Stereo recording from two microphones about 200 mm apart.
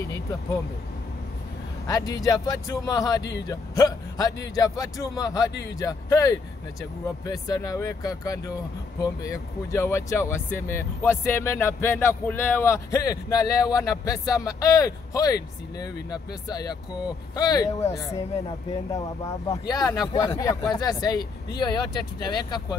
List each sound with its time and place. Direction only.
0.1 s speech: 15° left (ahead or behind)
1.9 s speech: 20° left (ahead or behind)
18.9 s speech: 15° left (ahead or behind)